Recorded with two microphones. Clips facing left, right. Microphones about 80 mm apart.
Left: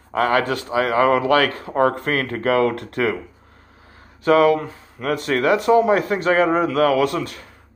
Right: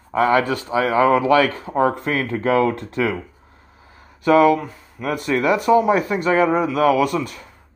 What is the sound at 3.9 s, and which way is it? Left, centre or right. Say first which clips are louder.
Speech: right 1 dB; left.